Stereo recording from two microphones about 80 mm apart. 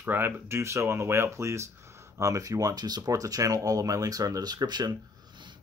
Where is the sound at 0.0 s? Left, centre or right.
Right.